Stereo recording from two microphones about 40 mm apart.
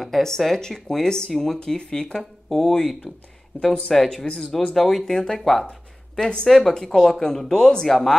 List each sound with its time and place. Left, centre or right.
0.0 s speech: centre
5.7 s speech: centre